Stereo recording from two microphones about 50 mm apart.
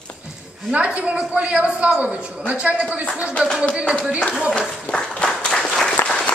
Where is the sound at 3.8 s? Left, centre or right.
Centre.